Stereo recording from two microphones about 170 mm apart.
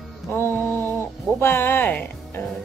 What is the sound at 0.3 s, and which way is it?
Music, 10° left (ahead or behind).